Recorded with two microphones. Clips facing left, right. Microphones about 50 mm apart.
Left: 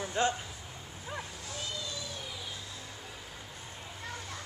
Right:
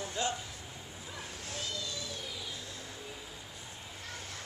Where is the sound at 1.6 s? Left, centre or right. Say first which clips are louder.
Left 1 dB; left.